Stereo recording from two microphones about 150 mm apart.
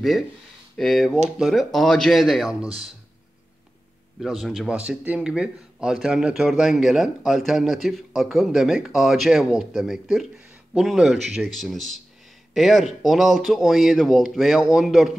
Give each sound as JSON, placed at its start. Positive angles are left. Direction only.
{"t": 0.7, "sound": "a man's voice", "side_deg": 0}
{"t": 4.2, "sound": "a man's voice", "side_deg": 0}